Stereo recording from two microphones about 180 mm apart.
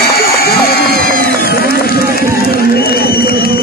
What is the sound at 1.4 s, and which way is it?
Run, 55° left (ahead or behind).